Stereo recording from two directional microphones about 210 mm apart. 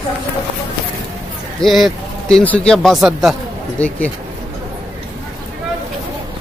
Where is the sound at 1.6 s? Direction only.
Centre (ahead or behind).